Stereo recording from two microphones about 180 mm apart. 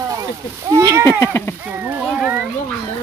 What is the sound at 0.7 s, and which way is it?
Speech, 20° right (ahead or behind).